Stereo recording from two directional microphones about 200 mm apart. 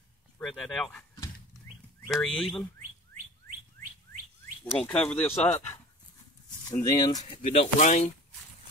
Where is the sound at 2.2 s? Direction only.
Centre (ahead or behind).